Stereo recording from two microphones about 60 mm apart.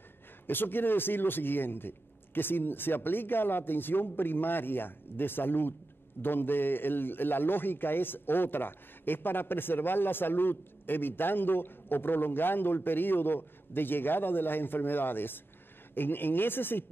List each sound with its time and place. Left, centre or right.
0.5 s a man's voice: left